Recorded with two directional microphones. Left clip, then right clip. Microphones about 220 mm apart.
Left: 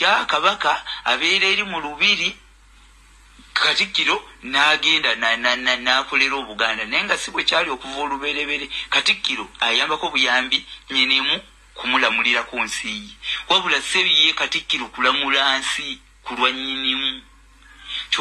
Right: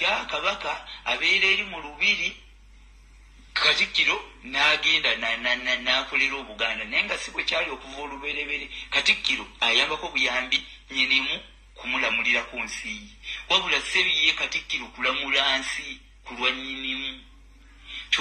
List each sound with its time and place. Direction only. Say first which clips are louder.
0.0 s a man's voice: left 8 dB; 30° left (ahead or behind)
3.5 s a man's voice: left 3 dB; 30° left (ahead or behind)